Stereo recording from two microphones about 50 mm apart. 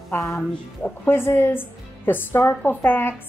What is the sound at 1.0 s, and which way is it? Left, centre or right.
A woman's voice, left.